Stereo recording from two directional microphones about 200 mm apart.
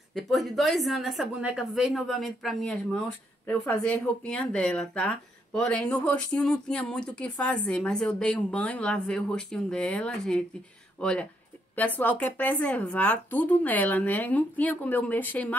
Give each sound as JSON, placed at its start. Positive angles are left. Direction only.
{"t": 0.1, "sound": "speech", "side_deg": 0}